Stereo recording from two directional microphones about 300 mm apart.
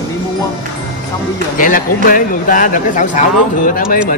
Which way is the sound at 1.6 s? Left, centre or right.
Left.